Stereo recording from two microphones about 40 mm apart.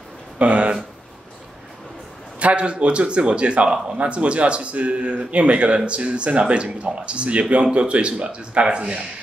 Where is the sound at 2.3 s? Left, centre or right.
Right.